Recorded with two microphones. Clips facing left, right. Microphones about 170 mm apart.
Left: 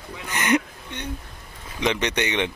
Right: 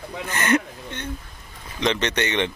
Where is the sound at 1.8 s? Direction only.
10° left (ahead or behind).